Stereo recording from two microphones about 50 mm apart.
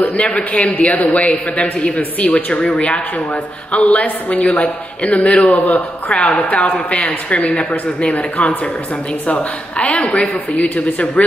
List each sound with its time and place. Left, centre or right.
0.3 s a man's voice: left